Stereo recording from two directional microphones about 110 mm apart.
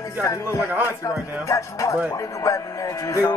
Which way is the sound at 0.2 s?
30° left (ahead or behind).